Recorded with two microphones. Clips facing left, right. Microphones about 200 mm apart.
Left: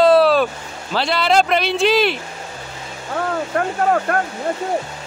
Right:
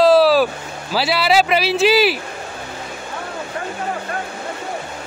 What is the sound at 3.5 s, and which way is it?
Speech, 60° left (ahead or behind).